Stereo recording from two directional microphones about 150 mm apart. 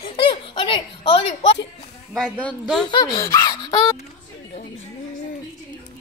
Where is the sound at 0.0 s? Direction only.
35° left (ahead or behind).